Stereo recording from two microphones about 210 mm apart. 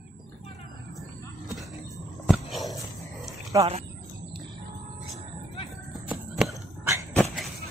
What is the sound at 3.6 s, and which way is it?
Speech, 30° right (ahead or behind).